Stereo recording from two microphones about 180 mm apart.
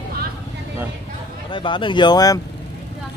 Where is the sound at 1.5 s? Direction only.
25° left (ahead or behind).